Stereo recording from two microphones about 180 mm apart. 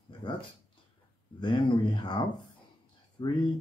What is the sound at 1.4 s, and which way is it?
Speech, 25° left (ahead or behind).